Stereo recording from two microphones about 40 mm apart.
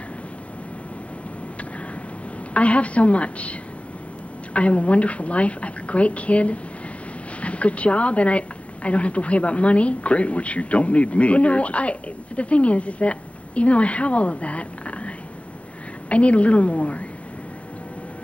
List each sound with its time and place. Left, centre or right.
2.5 s speech: left
4.6 s speech: left